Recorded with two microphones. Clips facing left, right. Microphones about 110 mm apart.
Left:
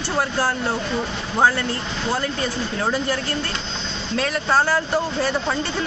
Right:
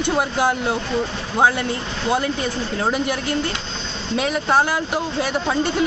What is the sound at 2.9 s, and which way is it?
Speech, 15° right (ahead or behind).